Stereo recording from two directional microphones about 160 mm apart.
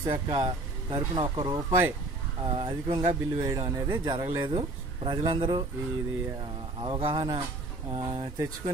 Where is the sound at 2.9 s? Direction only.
25° right (ahead or behind).